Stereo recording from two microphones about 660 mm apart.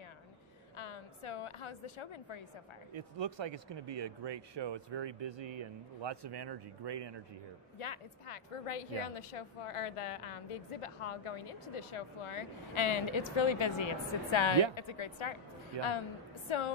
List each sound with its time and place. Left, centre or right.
0.7 s a woman's voice: left
2.9 s speech: right
7.8 s a woman's voice: left
15.7 s speech: right
16.4 s a woman's voice: left